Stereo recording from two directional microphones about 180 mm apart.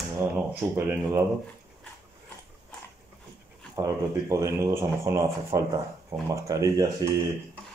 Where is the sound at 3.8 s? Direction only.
15° right (ahead or behind).